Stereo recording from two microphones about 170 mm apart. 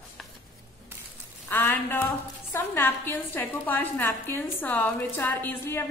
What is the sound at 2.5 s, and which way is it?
A woman's voice, 15° left (ahead or behind).